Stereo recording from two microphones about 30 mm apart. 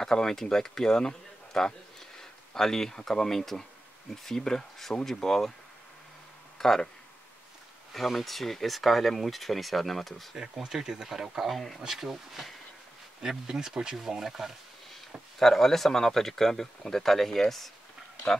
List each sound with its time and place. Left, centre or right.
0.0 s speech: left
6.6 s speech: centre
7.9 s speech: centre
10.3 s speech: right
11.5 s speech: centre
11.9 s speech: centre
13.2 s speech: right
15.3 s speech: centre